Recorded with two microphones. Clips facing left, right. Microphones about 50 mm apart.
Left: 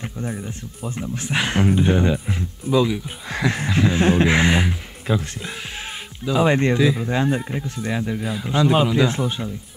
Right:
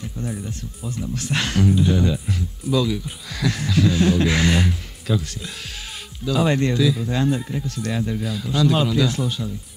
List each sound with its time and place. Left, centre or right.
0.2 s speech: left
1.6 s speech: left
7.6 s speech: left